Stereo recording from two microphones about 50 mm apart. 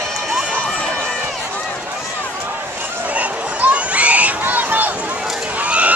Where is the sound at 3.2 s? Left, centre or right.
Right.